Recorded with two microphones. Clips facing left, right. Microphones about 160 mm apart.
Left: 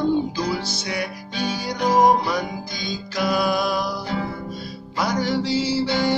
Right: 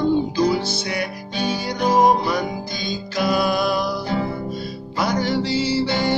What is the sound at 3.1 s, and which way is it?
Music, centre (ahead or behind).